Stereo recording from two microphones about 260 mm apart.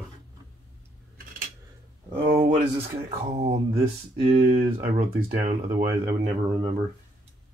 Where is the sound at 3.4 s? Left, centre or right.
Right.